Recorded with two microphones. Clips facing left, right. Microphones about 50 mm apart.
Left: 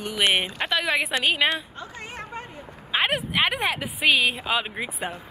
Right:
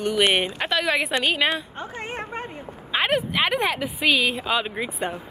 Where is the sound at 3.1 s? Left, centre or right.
Centre.